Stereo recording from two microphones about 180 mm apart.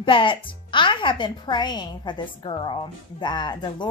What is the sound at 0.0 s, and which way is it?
A woman's voice, 30° left (ahead or behind).